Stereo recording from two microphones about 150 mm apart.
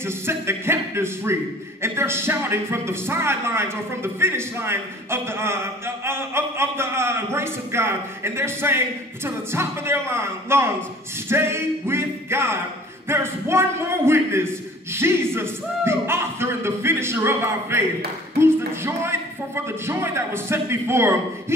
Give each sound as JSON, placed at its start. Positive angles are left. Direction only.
{"t": 0.0, "sound": "speech", "side_deg": -15}